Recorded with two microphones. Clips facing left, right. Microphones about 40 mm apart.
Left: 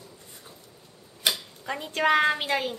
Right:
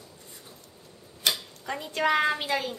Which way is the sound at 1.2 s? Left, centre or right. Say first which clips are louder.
Even; centre.